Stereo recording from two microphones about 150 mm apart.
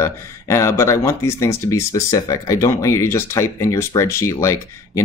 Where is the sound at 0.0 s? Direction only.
20° left (ahead or behind).